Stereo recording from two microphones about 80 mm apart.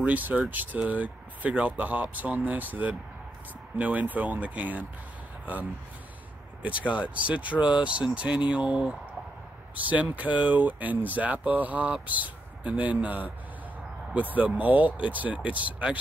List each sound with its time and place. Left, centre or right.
0.0 s speech: centre
6.9 s speech: centre